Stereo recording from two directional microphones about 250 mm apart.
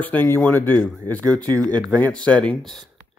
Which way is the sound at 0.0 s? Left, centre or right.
Centre.